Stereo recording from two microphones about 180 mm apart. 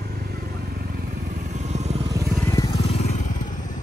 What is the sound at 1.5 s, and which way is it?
Vehicle, 40° right (ahead or behind).